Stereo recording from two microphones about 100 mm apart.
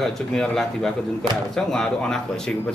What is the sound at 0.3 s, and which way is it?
A man's voice, 5° left (ahead or behind).